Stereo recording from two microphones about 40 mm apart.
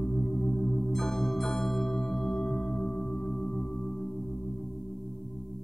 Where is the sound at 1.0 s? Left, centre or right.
Centre.